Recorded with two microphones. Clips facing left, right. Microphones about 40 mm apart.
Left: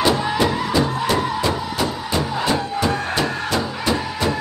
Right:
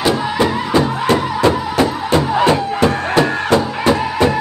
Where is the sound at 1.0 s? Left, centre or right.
Right.